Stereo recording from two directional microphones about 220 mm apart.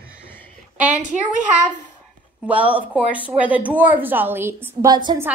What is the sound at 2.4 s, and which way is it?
A woman's voice, 5° right (ahead or behind).